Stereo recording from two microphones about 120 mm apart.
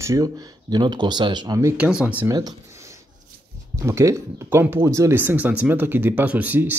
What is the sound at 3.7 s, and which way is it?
Speech, 25° right (ahead or behind).